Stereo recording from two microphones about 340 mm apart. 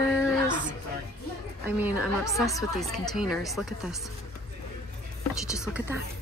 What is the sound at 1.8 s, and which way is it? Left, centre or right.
Speech, centre.